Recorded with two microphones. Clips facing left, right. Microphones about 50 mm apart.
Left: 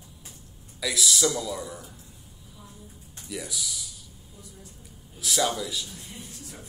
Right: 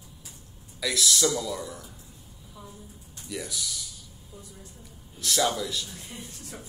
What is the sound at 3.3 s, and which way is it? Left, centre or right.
Speech, centre.